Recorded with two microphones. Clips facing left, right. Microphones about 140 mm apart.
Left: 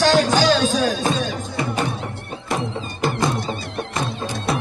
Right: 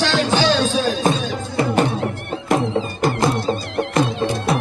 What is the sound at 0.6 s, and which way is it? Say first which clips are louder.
Music: even; 15° left (ahead or behind).